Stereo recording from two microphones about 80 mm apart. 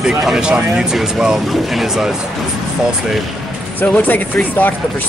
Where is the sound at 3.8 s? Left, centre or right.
Left.